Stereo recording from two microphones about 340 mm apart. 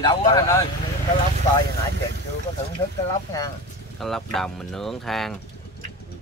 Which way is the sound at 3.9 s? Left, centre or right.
Centre.